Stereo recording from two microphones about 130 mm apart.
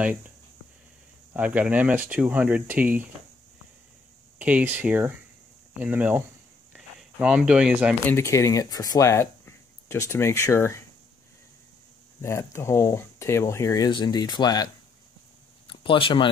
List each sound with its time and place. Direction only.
1.3 s speech: 10° right (ahead or behind)
4.4 s speech: 10° right (ahead or behind)
6.7 s a sound: 5° right (ahead or behind)
8.1 s speech: 20° left (ahead or behind)
12.2 s speech: 20° left (ahead or behind)
13.8 s speech: 35° left (ahead or behind)
15.6 s a sound: 40° left (ahead or behind)